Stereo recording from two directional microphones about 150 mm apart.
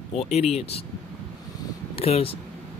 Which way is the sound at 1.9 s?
40° left (ahead or behind).